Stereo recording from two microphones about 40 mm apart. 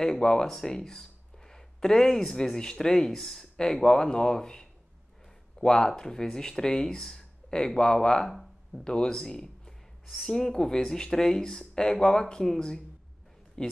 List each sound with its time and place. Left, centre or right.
0.0 s speech: centre
3.5 s speech: centre
10.0 s speech: centre
10.3 s speech: centre